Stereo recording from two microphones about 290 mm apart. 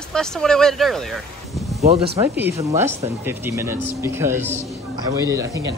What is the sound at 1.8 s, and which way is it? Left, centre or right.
Speech, centre.